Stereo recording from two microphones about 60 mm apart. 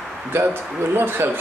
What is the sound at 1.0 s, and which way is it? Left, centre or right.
Speech, right.